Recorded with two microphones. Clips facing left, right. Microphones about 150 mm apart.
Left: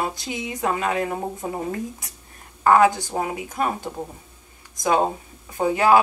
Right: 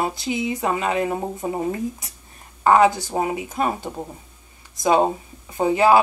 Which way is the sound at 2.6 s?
15° right (ahead or behind).